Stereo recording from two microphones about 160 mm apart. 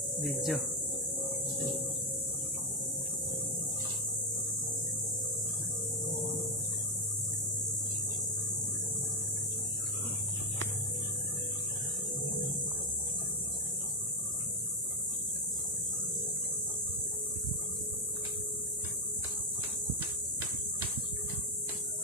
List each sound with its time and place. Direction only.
0.2 s speech: centre (ahead or behind)